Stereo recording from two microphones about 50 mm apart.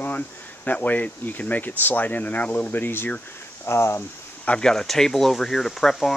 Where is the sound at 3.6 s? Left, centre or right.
Left.